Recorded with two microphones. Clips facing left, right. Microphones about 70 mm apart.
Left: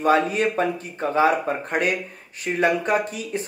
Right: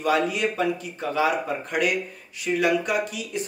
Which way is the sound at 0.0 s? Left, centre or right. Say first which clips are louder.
Left 4 dB; left.